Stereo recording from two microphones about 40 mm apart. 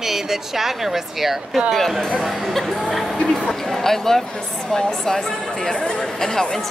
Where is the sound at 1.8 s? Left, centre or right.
Centre.